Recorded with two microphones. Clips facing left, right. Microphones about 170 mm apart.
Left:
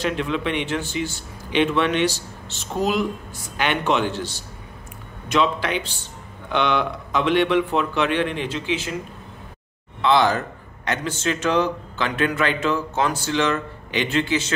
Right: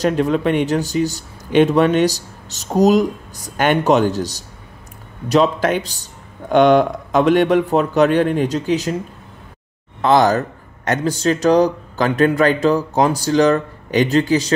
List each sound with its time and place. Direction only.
0.0 s a man's voice: 40° right (ahead or behind)
10.0 s a man's voice: 45° right (ahead or behind)